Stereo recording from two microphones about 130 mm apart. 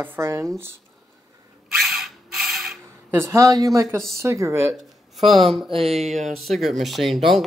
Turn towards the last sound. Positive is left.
turn(degrees=0)  # may be behind; listen again after turning